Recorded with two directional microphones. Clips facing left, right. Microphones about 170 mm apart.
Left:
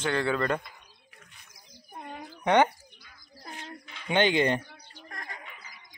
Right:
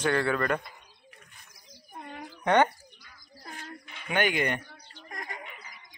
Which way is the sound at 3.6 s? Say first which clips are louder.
Left 4 dB; 25° left (ahead or behind).